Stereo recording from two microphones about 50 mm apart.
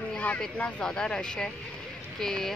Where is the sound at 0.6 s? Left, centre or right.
Left.